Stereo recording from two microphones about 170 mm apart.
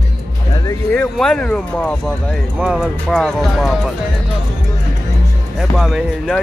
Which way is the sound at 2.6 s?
5° right (ahead or behind).